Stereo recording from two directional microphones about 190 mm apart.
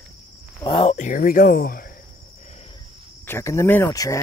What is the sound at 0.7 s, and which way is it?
Speech, 30° left (ahead or behind).